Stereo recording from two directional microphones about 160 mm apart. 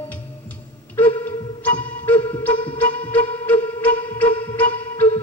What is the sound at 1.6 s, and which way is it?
Music, 10° left (ahead or behind).